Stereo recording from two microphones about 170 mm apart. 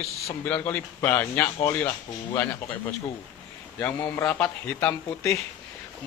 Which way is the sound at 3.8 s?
10° left (ahead or behind).